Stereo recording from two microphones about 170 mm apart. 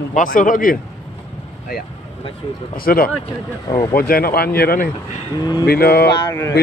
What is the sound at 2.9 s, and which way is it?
Speech, 60° left (ahead or behind).